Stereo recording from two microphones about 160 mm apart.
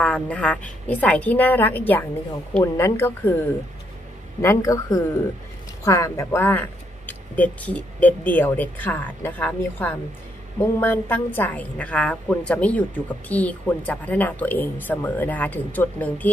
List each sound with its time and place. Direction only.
0.0 s speech: 5° left (ahead or behind)
4.4 s speech: 20° left (ahead or behind)